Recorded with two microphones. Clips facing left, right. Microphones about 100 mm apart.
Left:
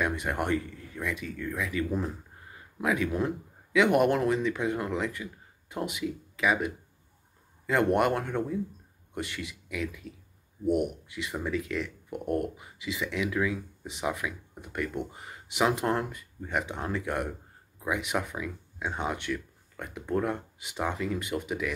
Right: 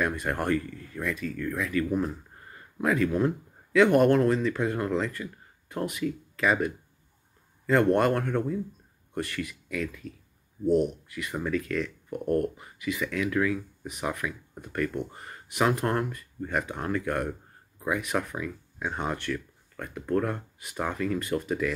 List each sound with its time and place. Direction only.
0.0 s speech: 15° left (ahead or behind)